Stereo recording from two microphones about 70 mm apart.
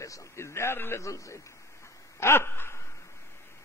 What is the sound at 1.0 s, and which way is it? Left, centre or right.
Speech, left.